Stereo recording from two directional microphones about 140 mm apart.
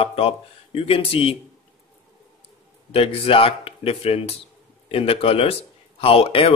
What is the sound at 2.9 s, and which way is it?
Speech, 45° left (ahead or behind).